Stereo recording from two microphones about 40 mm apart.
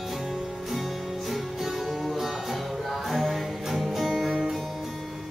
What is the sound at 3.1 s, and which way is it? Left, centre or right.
Music, centre.